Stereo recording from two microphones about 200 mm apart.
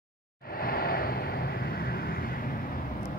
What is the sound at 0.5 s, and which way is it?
Vehicle, 50° left (ahead or behind).